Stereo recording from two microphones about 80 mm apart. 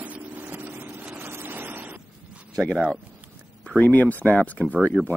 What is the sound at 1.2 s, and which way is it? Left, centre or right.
Vehicle, right.